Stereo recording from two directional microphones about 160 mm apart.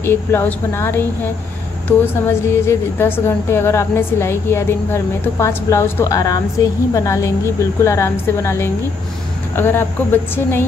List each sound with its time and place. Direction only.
0.0 s a woman's voice: 15° left (ahead or behind)